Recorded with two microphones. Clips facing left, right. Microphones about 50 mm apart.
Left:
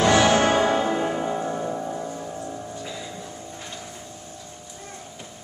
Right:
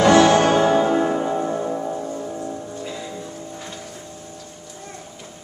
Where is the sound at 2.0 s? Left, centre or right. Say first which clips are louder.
Right 4 dB; centre.